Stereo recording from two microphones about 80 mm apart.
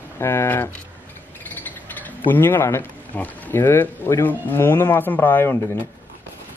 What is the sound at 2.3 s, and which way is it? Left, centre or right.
Speech, left.